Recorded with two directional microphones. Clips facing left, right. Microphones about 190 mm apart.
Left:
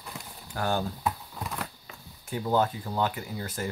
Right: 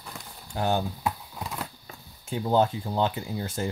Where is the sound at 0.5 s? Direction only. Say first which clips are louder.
Right 2 dB; 20° right (ahead or behind).